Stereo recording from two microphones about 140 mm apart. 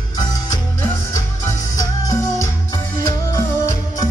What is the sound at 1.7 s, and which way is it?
Music, 25° left (ahead or behind).